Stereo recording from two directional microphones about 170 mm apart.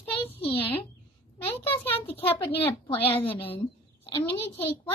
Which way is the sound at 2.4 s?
30° left (ahead or behind).